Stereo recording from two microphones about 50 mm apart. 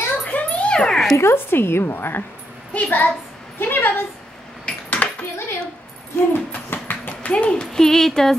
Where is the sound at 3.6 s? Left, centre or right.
Left.